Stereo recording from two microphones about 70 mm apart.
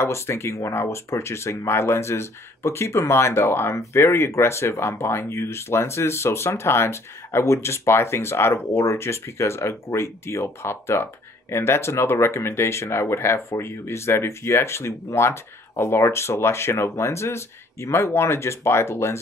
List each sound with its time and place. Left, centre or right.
0.0 s speech: left